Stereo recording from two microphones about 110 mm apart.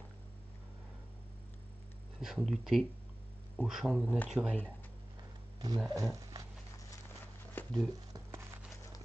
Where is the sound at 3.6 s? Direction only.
5° right (ahead or behind).